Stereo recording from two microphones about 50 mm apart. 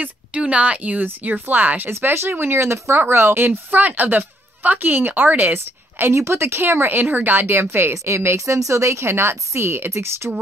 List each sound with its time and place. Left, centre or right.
0.4 s speech: right
1.9 s speech: right
6.1 s speech: right
7.9 s a woman's voice: right
8.6 s a woman's voice: right